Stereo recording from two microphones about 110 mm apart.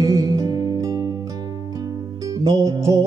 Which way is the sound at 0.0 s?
30° right (ahead or behind).